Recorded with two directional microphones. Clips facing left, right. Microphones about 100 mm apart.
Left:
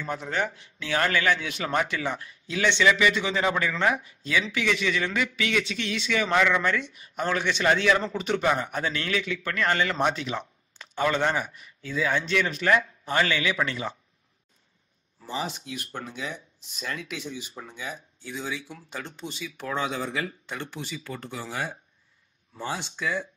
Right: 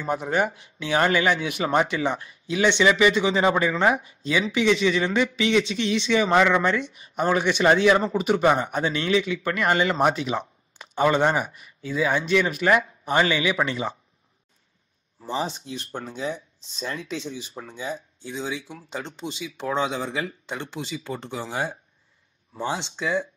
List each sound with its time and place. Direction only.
0.0 s speech: 15° right (ahead or behind)
15.2 s speech: 30° right (ahead or behind)